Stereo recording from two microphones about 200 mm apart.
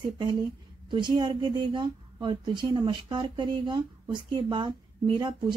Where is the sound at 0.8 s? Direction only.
25° right (ahead or behind).